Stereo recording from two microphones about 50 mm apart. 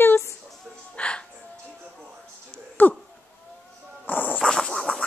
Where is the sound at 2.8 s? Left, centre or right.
Left.